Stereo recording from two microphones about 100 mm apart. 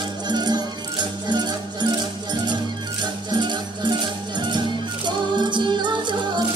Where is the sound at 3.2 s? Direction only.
50° right (ahead or behind).